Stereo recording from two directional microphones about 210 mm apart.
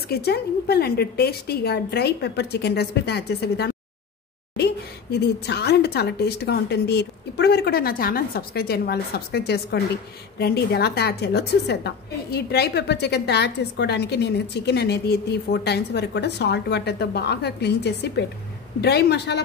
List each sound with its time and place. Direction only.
0.1 s a woman's voice: 50° left (ahead or behind)